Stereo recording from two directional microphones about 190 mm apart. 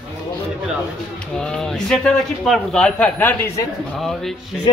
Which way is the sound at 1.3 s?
5° left (ahead or behind).